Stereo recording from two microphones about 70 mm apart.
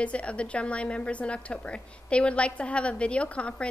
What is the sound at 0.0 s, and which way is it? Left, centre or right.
A woman's voice, centre.